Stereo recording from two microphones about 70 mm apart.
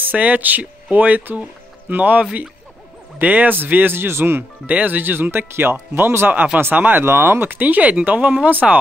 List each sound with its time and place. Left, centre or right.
0.0 s speech: right